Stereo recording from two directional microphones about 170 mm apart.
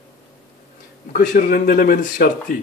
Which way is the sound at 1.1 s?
50° left (ahead or behind).